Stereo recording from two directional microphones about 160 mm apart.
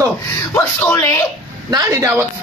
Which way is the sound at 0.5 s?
15° left (ahead or behind).